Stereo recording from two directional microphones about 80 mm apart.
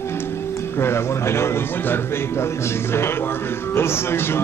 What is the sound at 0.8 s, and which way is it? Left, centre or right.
Speech, left.